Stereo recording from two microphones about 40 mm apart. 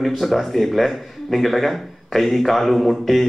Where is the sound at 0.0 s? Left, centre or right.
Centre.